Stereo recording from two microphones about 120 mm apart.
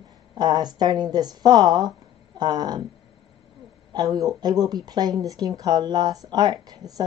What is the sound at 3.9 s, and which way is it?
Speech, 35° right (ahead or behind).